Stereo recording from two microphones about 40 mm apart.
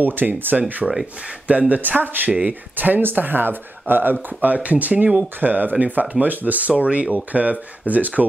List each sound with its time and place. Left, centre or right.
0.0 s speech: right
0.6 s speech: right